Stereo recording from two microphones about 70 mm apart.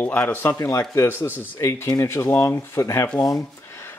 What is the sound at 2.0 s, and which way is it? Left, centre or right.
Speech, left.